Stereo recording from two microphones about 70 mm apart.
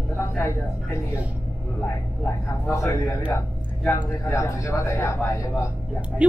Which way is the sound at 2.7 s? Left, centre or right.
Left.